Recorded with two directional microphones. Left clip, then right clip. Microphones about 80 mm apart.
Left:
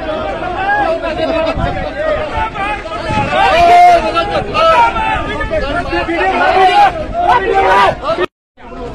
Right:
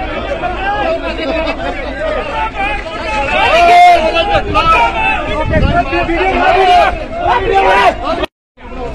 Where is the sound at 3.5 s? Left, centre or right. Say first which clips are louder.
Right 1 dB; centre.